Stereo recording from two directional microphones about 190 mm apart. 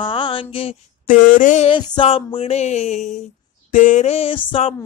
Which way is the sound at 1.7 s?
30° left (ahead or behind).